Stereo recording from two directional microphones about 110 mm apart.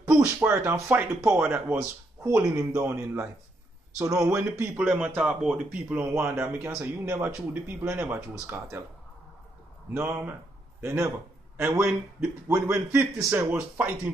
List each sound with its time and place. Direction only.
0.1 s speech: 15° right (ahead or behind)
2.2 s speech: 25° right (ahead or behind)
4.7 s speech: 10° right (ahead or behind)
9.9 s a man's voice: 20° right (ahead or behind)